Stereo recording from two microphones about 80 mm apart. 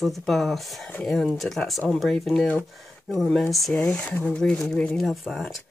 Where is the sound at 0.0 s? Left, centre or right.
Centre.